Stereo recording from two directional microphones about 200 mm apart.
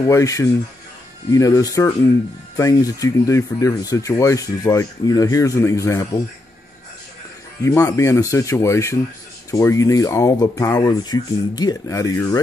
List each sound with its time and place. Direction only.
0.0 s speech: 15° left (ahead or behind)
7.6 s speech: 15° left (ahead or behind)